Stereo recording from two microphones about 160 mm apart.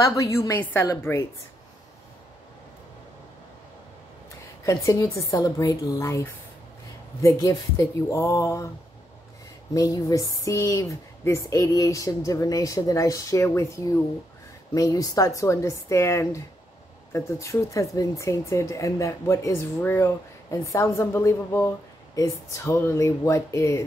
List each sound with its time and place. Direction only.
0.0 s speech: 20° left (ahead or behind)
4.6 s speech: 20° left (ahead or behind)
9.8 s speech: 20° left (ahead or behind)